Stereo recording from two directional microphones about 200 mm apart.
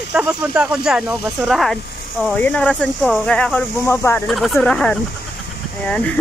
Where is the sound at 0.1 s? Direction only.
5° right (ahead or behind).